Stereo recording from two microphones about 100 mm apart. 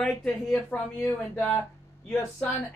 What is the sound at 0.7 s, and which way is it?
Speech, 20° left (ahead or behind).